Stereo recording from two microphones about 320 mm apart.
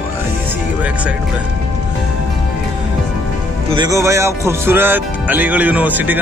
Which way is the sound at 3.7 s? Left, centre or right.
Centre.